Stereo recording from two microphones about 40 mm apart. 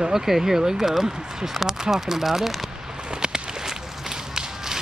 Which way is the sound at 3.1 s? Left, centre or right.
Centre.